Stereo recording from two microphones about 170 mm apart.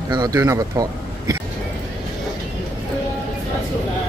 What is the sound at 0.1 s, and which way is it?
Speech, 20° right (ahead or behind).